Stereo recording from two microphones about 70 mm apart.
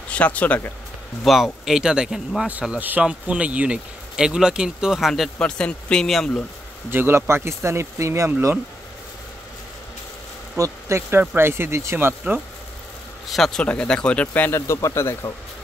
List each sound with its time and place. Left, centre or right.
0.1 s speech: centre
1.2 s speech: centre
3.0 s speech: centre
5.4 s speech: centre
6.9 s speech: right
10.6 s speech: right
13.3 s speech: centre; by 14.6 s left
14.7 s speech: left